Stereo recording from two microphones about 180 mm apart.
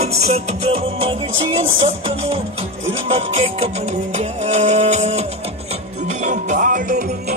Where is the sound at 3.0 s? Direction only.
35° right (ahead or behind).